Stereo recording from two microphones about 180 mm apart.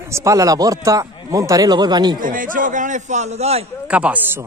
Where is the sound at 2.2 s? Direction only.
50° right (ahead or behind).